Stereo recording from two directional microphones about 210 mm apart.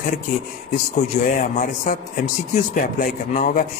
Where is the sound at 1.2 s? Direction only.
40° left (ahead or behind).